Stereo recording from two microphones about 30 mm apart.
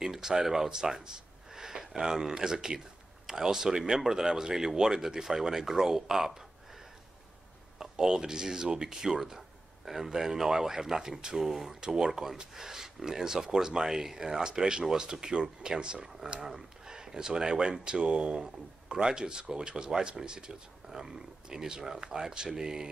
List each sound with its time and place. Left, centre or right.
0.0 s speech: centre
7.8 s speech: right